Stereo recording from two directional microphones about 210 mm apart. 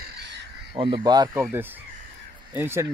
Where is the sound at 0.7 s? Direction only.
25° right (ahead or behind).